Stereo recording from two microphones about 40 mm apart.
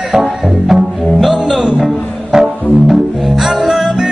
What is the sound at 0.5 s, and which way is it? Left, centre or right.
Music, centre.